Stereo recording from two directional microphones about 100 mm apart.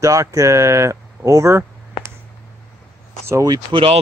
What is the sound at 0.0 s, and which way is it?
Speech, 35° right (ahead or behind).